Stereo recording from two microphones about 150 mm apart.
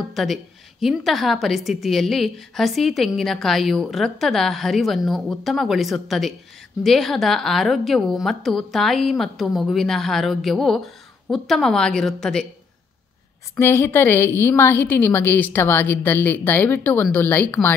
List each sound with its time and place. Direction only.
0.1 s a woman's voice: centre (ahead or behind)
13.6 s a woman's voice: 15° left (ahead or behind)